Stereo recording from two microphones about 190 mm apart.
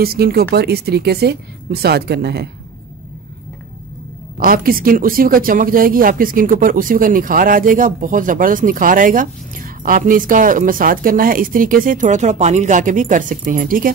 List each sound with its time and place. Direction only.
0.0 s speech: 55° right (ahead or behind)
4.4 s speech: 50° right (ahead or behind)